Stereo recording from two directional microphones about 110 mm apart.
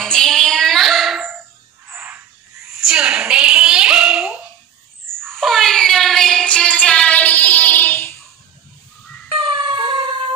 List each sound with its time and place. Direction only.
0.0 s child singing: 5° left (ahead or behind)
1.9 s frog: 15° right (ahead or behind)
2.7 s a sound: 5° right (ahead or behind)
5.3 s child singing: centre (ahead or behind); by 8.2 s 20° left (ahead or behind)
9.3 s music: 50° right (ahead or behind)